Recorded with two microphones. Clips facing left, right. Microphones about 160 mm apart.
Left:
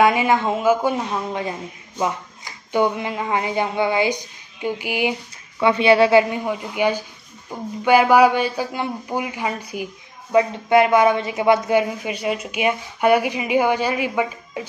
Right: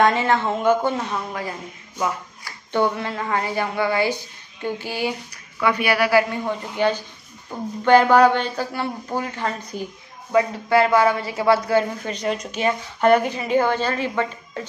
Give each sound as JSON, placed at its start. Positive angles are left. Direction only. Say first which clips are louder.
{"t": 0.0, "sound": "speech", "louder": "left 2 dB", "side_deg": 10}
{"t": 1.3, "sound": "a woman's voice", "louder": "left 3 dB", "side_deg": 20}
{"t": 6.4, "sound": "speech", "louder": "left 1 dB", "side_deg": 10}